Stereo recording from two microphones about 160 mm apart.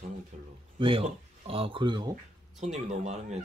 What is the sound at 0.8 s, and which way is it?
Speech, 35° right (ahead or behind).